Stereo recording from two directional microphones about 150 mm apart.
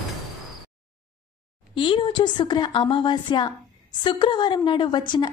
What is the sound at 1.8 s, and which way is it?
A woman's voice, 35° left (ahead or behind).